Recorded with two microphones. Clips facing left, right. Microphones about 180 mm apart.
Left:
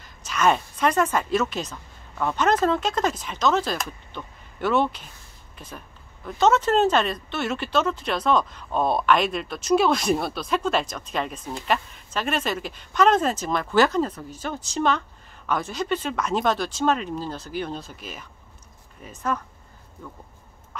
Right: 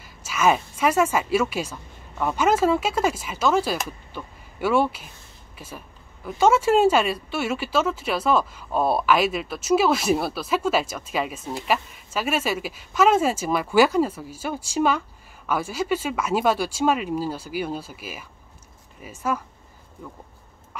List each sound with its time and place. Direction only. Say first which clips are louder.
0.0 s speech: right 1 dB; 5° right (ahead or behind)